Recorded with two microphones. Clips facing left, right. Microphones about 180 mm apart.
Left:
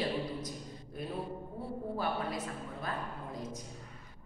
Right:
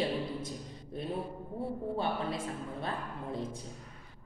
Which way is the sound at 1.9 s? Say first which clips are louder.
Even; 25° right (ahead or behind).